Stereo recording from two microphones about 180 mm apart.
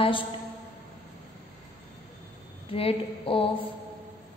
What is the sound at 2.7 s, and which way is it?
Speech, 30° left (ahead or behind).